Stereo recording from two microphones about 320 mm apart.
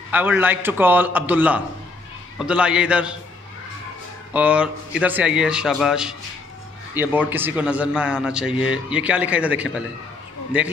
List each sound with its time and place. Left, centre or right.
0.1 s a man's voice: centre
4.3 s a man's voice: centre